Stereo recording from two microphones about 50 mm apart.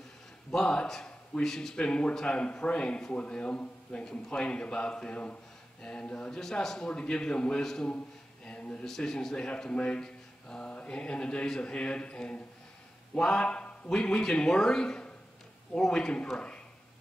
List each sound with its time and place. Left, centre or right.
0.5 s speech: centre
1.8 s a man's voice: left
8.5 s a sound: left
8.8 s a man's voice: centre